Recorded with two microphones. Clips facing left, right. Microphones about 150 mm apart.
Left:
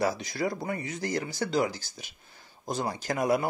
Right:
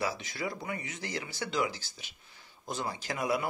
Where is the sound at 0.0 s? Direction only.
40° left (ahead or behind).